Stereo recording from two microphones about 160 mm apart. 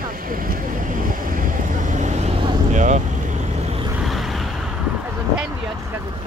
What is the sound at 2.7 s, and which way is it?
Vehicle, 50° right (ahead or behind).